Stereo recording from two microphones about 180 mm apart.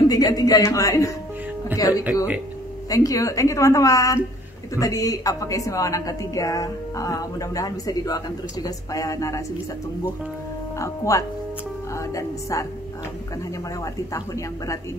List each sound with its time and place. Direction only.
0.1 s a woman's voice: 20° left (ahead or behind)
10.8 s a woman's voice: 15° left (ahead or behind)
13.7 s a woman's voice: 20° left (ahead or behind)